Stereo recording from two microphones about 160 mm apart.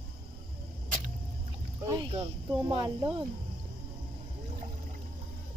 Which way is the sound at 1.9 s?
30° right (ahead or behind).